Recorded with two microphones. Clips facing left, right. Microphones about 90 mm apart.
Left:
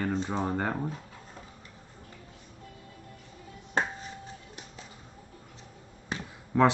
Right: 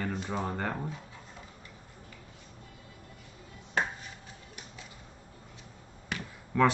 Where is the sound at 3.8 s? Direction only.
30° left (ahead or behind).